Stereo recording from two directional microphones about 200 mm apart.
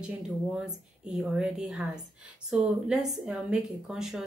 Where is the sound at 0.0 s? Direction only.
5° right (ahead or behind).